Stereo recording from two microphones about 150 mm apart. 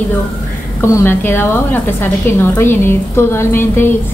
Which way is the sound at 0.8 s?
15° left (ahead or behind).